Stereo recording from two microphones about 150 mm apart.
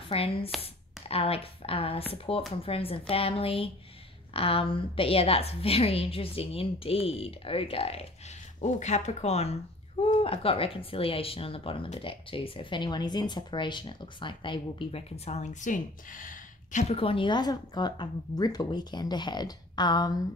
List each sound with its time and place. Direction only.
0.1 s speech: 40° left (ahead or behind)
8.5 s speech: 50° left (ahead or behind)
16.8 s speech: 40° left (ahead or behind)